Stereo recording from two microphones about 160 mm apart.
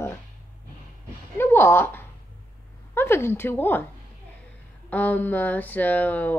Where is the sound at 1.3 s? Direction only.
15° left (ahead or behind).